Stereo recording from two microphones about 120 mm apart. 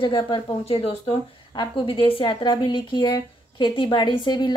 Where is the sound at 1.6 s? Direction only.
45° left (ahead or behind).